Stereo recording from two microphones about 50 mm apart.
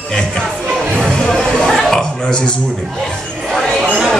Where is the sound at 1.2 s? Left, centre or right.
Centre.